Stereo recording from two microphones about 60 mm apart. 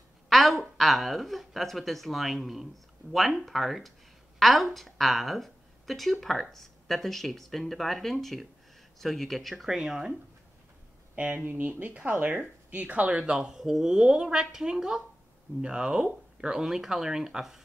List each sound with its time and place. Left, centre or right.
0.3 s a woman's voice: centre
11.1 s speech: right
13.2 s speech: centre